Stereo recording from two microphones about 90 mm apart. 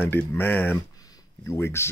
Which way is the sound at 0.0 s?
25° left (ahead or behind).